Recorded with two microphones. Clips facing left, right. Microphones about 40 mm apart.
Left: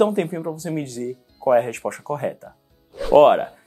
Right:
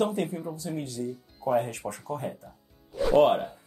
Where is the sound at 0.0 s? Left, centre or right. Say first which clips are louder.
Left 8 dB; left.